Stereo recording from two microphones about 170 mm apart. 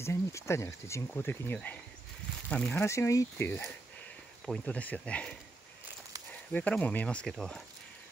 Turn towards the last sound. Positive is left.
turn(degrees=5)  # may be behind; listen again after turning